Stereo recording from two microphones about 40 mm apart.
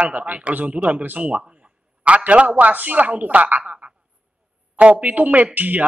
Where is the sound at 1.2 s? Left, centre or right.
Right.